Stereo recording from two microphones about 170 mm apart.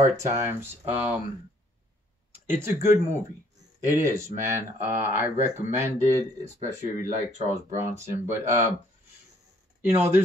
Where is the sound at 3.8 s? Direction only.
15° right (ahead or behind).